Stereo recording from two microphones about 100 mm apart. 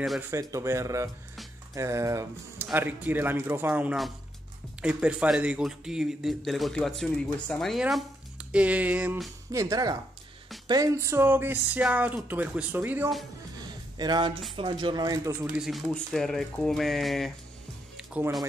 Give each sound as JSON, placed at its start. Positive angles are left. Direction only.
{"t": 0.3, "sound": "speech", "side_deg": -35}
{"t": 2.6, "sound": "speech", "side_deg": -20}
{"t": 8.4, "sound": "speech", "side_deg": -10}
{"t": 9.5, "sound": "speech", "side_deg": -35}
{"t": 13.6, "sound": "music", "side_deg": -45}
{"t": 14.6, "sound": "speech", "side_deg": -55}
{"t": 15.4, "sound": "speech", "side_deg": -10}
{"t": 15.9, "sound": "speech", "side_deg": 5}